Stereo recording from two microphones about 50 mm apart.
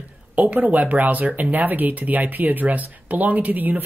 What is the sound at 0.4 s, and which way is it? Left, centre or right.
Speech, right.